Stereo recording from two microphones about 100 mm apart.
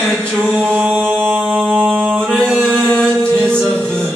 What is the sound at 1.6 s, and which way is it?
Music, centre (ahead or behind).